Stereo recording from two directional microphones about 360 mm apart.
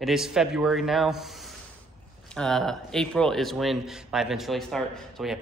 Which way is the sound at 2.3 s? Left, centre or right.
Centre.